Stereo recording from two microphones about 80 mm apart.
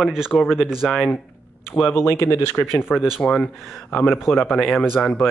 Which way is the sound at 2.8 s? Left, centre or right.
Centre.